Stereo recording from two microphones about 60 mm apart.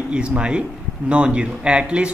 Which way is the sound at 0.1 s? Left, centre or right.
Centre.